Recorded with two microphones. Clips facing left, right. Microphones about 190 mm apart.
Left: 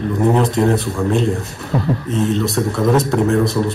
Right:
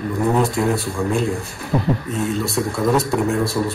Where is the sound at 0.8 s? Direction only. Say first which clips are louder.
Left 3 dB; centre (ahead or behind).